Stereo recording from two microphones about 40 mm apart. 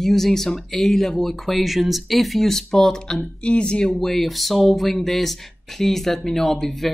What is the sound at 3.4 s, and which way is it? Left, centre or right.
Speech, left.